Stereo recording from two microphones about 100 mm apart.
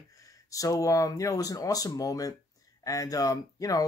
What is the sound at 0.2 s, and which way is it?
Speech, 35° left (ahead or behind).